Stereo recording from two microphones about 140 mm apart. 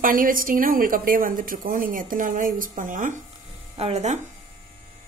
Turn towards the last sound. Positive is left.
turn(degrees=-55)  # may be behind; listen again after turning